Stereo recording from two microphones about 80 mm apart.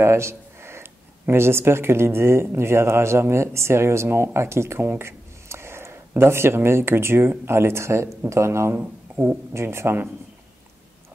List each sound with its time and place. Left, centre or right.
0.0 s speech: right